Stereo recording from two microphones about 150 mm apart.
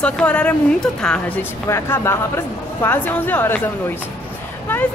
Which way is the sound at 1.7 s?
15° left (ahead or behind).